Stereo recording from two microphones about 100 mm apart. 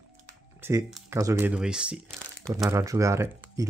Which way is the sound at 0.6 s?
25° right (ahead or behind).